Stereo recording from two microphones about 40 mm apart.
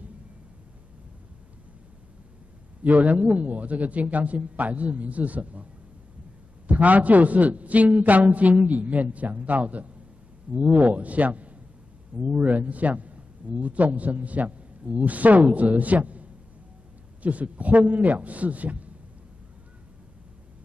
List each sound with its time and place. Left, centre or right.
2.8 s a man's voice: right
6.7 s a man's voice: right